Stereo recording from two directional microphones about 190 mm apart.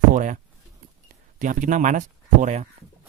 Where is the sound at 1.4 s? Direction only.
40° right (ahead or behind).